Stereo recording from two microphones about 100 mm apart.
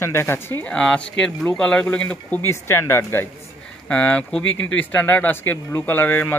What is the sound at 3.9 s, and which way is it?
Speech, 15° left (ahead or behind).